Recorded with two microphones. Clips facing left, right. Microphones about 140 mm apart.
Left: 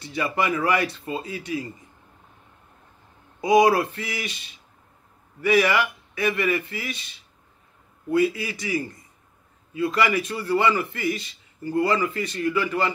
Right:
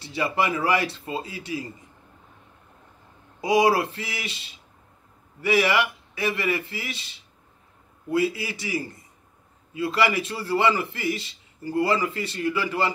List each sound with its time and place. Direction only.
0.0 s a man's voice: 30° right (ahead or behind)
3.3 s a man's voice: 30° right (ahead or behind)